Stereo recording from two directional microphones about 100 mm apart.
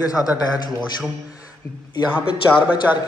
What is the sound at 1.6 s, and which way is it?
Speech, 75° right (ahead or behind).